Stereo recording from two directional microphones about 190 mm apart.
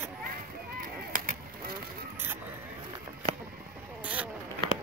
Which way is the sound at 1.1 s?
45° right (ahead or behind).